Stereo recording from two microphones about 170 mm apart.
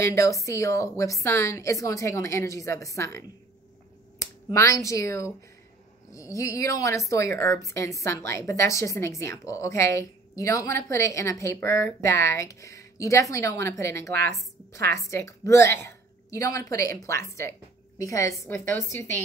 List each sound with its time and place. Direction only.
0.0 s a woman's voice: 15° left (ahead or behind)